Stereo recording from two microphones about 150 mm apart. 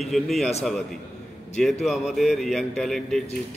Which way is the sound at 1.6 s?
Centre (ahead or behind).